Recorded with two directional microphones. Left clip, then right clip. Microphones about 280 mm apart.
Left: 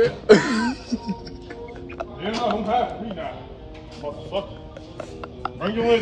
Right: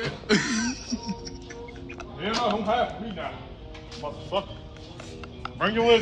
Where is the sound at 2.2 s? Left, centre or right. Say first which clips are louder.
Left 1 dB; centre.